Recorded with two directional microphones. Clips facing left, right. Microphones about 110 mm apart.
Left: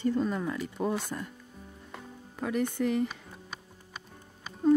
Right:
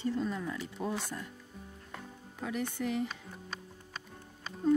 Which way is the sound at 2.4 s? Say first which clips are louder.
Left 6 dB; 55° left (ahead or behind).